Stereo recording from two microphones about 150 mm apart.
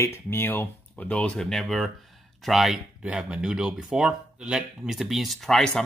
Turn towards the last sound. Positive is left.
turn(degrees=5)  # may be behind; listen again after turning